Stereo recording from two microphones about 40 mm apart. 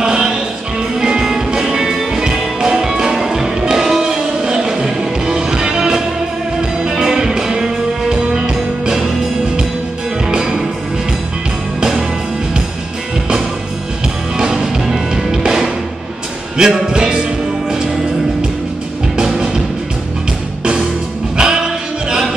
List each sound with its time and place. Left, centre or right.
0.0 s music: centre
10.2 s music: centre
14.3 s music: centre
19.1 s music: centre
21.4 s music: centre